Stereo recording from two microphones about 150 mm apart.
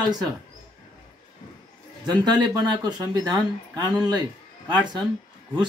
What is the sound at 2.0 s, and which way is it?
Speech, 30° right (ahead or behind).